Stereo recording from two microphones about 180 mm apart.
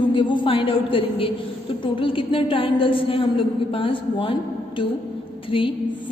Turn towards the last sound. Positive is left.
turn(degrees=30)  # may be behind; listen again after turning